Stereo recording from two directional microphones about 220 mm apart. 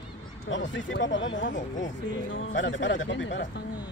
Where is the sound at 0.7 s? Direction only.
60° left (ahead or behind).